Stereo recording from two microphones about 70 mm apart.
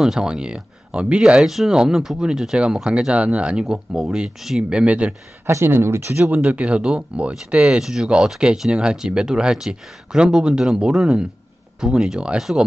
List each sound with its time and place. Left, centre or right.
0.0 s speech: centre
5.5 s speech: right
6.2 s speech: centre